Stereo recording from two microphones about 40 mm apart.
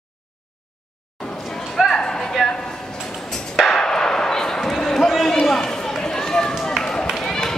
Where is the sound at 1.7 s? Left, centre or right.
Centre.